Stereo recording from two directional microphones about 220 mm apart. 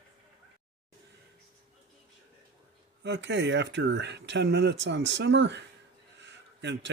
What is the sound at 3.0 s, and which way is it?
Speech, 50° right (ahead or behind).